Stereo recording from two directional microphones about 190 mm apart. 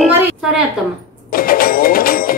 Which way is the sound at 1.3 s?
50° left (ahead or behind).